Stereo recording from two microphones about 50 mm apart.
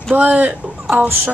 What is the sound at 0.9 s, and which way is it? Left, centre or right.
Speech, right.